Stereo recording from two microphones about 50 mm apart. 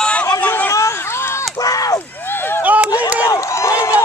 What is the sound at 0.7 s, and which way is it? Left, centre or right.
Run, left.